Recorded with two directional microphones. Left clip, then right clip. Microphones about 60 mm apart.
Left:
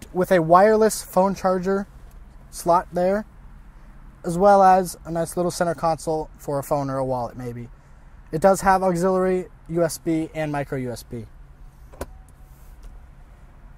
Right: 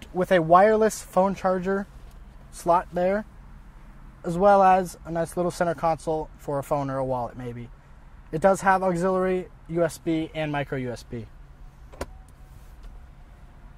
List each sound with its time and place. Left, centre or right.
0.1 s speech: left